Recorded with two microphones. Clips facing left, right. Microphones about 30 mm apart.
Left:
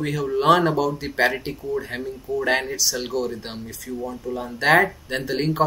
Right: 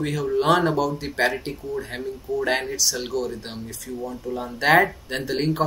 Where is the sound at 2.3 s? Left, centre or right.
Centre.